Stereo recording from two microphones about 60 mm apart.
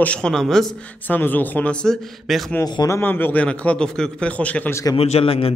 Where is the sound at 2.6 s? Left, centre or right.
Left.